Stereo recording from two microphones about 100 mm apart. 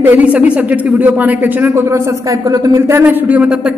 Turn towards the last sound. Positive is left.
turn(degrees=-10)  # may be behind; listen again after turning